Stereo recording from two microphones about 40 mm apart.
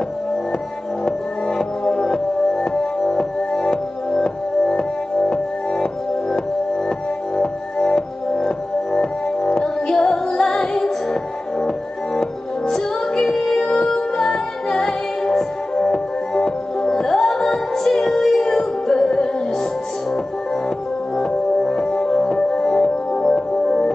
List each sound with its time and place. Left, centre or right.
1.0 s music: centre
7.3 s music: centre
12.2 s music: centre
21.2 s music: centre